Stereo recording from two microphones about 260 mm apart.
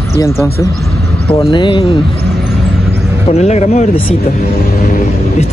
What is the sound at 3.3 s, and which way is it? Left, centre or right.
Speech, left.